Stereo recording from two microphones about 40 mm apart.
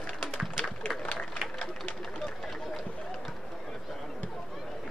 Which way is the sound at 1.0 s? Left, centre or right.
Left.